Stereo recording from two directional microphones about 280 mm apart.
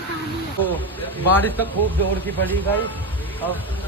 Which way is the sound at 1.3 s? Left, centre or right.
Centre.